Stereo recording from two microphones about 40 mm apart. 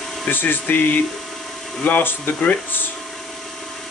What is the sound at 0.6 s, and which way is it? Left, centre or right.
Speech, left.